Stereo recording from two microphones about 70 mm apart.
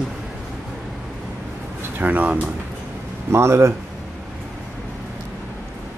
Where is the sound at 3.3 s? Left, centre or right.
Right.